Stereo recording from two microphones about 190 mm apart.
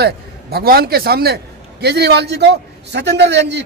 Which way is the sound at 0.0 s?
55° right (ahead or behind).